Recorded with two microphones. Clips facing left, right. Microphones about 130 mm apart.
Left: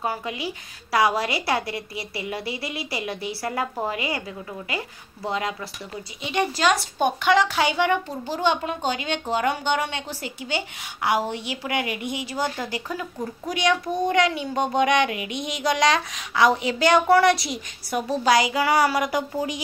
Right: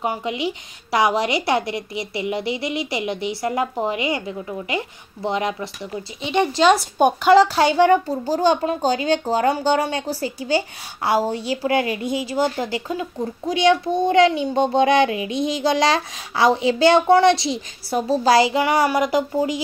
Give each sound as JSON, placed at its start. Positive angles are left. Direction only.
{"t": 0.0, "sound": "a child's voice", "side_deg": -20}
{"t": 7.0, "sound": "speech", "side_deg": -45}
{"t": 7.3, "sound": "a woman's voice", "side_deg": -35}